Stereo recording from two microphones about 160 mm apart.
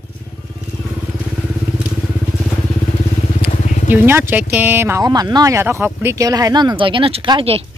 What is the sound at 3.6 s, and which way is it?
Vehicle, 50° left (ahead or behind).